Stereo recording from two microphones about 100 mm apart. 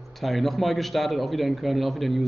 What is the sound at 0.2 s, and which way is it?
A man's voice, centre (ahead or behind).